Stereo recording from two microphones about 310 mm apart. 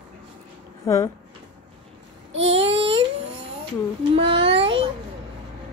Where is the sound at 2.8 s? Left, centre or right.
Centre.